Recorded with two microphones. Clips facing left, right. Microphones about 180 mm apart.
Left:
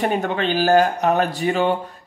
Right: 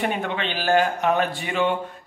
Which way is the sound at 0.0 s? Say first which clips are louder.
Left 5 dB; 40° left (ahead or behind).